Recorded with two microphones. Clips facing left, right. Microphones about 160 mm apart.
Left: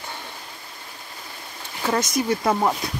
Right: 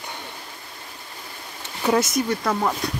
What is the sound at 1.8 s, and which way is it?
Speech, 5° right (ahead or behind).